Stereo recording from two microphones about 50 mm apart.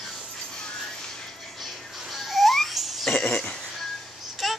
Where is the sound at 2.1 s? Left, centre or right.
Centre.